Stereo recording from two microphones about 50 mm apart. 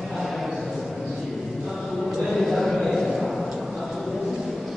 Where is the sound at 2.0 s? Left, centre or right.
Centre.